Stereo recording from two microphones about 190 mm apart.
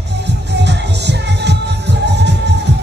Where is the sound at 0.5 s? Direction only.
65° right (ahead or behind).